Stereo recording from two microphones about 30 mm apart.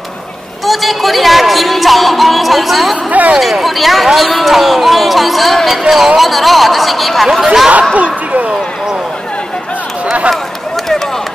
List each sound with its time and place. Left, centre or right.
0.7 s music: centre
3.1 s speech: right
3.3 s speech: centre
7.4 s speech: centre
7.9 s a sound: right